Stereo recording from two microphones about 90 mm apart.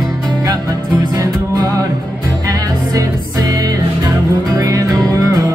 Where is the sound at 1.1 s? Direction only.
40° right (ahead or behind).